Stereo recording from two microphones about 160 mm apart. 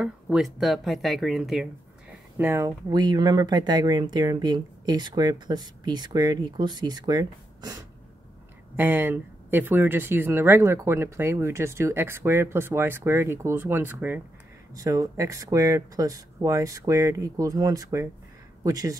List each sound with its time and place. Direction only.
0.0 s speech: 5° right (ahead or behind)
2.3 s speech: 15° right (ahead or behind)
2.9 s speech: 25° right (ahead or behind)
8.7 s speech: 10° right (ahead or behind)